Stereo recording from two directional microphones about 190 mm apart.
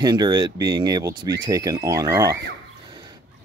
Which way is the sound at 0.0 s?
20° right (ahead or behind).